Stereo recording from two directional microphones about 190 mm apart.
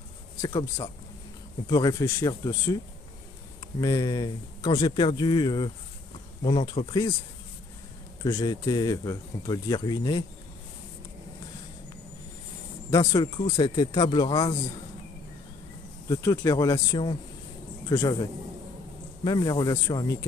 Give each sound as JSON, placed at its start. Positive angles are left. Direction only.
{"t": 0.4, "sound": "speech", "side_deg": 15}
{"t": 3.8, "sound": "speech", "side_deg": 20}
{"t": 8.2, "sound": "speech", "side_deg": 20}
{"t": 12.9, "sound": "speech", "side_deg": 20}
{"t": 16.1, "sound": "a man's voice", "side_deg": 15}
{"t": 19.2, "sound": "speech", "side_deg": 25}